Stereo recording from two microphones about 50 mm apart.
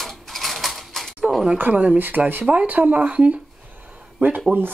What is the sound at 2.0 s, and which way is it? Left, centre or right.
Speech, right.